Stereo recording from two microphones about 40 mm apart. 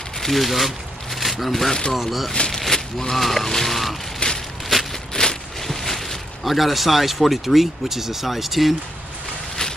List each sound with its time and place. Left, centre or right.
0.2 s speech: centre
2.0 s goose: centre
2.5 s sheep: centre
3.2 s goose: centre
4.2 s a sound: left
5.1 s speech: centre